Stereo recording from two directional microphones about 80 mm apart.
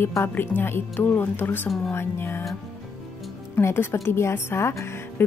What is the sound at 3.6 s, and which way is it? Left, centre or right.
Speech, left.